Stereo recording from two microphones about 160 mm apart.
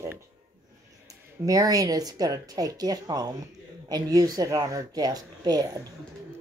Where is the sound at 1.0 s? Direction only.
20° right (ahead or behind).